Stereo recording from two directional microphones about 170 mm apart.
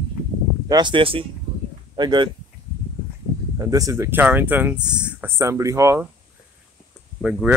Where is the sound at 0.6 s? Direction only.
25° right (ahead or behind).